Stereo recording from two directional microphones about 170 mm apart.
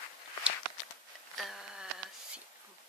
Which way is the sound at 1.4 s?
Centre (ahead or behind).